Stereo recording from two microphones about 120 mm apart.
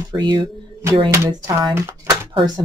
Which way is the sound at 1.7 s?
25° right (ahead or behind).